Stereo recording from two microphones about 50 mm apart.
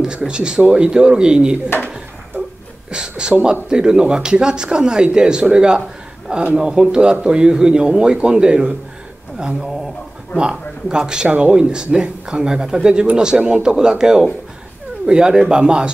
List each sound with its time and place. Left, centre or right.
0.0 s speech: centre
2.9 s speech: centre